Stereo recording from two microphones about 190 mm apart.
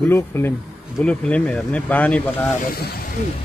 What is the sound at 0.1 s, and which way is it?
Speech, 10° left (ahead or behind).